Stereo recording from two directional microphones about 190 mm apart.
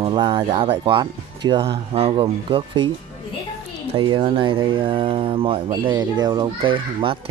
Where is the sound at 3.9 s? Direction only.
25° right (ahead or behind).